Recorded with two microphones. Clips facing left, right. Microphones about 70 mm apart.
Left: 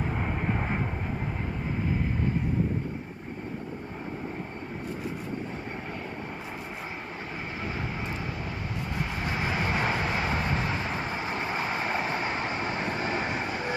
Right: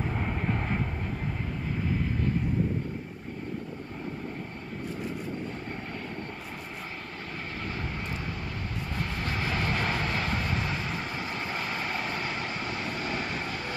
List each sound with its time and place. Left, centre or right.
0.0 s vehicle: centre
7.6 s vehicle: centre
8.9 s vehicle: centre